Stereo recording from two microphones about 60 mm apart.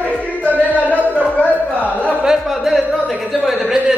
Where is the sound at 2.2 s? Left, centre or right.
Centre.